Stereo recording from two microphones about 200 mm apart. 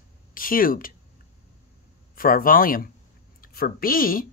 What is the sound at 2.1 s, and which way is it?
A woman's voice, 45° left (ahead or behind).